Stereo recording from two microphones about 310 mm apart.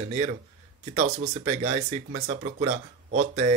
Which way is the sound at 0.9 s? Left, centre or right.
Right.